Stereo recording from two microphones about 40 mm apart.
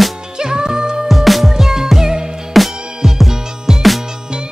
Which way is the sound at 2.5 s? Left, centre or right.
Centre.